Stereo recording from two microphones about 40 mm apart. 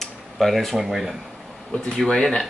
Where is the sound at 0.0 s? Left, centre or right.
Centre.